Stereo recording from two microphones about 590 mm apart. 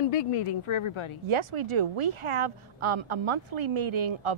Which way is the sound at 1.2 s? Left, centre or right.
Right.